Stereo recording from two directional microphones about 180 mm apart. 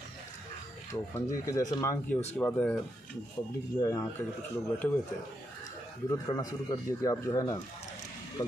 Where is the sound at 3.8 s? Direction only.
20° left (ahead or behind).